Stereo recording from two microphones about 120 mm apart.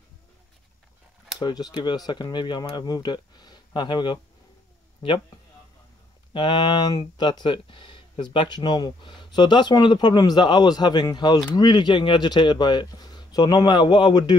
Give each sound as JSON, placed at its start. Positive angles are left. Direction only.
{"t": 1.4, "sound": "speech", "side_deg": 35}
{"t": 6.3, "sound": "speech", "side_deg": 40}